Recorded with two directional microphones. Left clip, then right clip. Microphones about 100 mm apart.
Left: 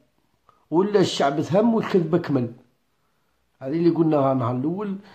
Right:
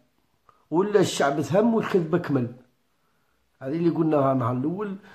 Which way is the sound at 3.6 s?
15° left (ahead or behind).